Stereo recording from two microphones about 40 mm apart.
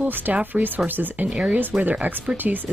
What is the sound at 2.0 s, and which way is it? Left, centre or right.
Speech, right.